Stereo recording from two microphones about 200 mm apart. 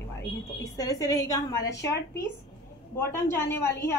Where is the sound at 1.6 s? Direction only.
60° left (ahead or behind).